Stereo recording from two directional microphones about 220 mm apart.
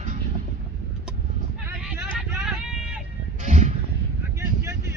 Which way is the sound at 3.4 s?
30° right (ahead or behind).